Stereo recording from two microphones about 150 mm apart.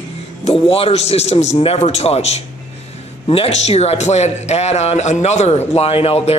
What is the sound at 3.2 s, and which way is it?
Speech, 40° left (ahead or behind).